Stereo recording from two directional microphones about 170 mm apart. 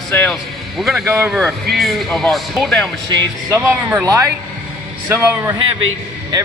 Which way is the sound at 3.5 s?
15° right (ahead or behind).